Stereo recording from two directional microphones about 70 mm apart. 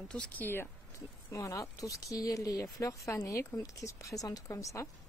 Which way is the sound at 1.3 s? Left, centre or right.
Left.